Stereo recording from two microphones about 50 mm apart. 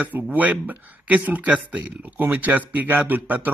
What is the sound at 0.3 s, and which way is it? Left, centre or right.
Speech, right.